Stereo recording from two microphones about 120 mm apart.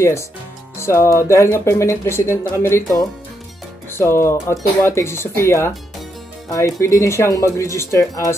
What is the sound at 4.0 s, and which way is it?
Speech, 20° left (ahead or behind).